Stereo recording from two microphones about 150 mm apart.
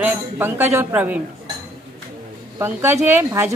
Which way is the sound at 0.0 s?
15° right (ahead or behind).